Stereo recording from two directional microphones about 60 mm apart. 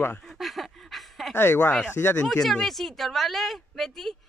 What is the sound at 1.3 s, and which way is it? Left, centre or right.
Speech, left.